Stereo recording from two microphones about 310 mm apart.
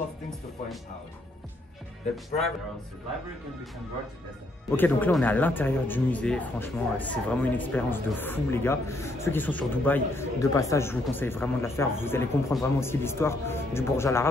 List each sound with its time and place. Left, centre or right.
4.6 s speech: centre